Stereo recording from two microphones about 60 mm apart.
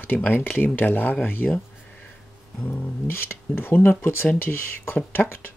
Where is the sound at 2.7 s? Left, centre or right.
Left.